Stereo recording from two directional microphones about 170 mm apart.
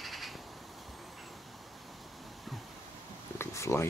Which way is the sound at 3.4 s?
15° left (ahead or behind).